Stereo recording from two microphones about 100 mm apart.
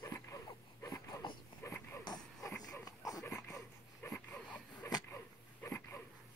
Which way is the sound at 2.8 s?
40° left (ahead or behind).